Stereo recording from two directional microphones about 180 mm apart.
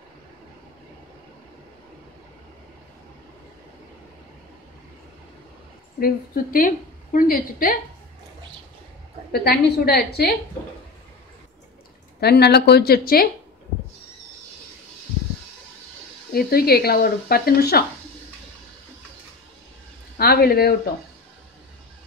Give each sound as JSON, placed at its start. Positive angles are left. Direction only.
{"t": 5.9, "sound": "a woman's voice", "side_deg": 55}
{"t": 9.3, "sound": "a woman's voice", "side_deg": 60}
{"t": 12.2, "sound": "a woman's voice", "side_deg": 65}
{"t": 16.3, "sound": "a woman's voice", "side_deg": 60}
{"t": 20.2, "sound": "a woman's voice", "side_deg": 60}